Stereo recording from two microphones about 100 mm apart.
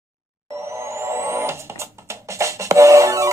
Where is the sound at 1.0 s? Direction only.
25° right (ahead or behind).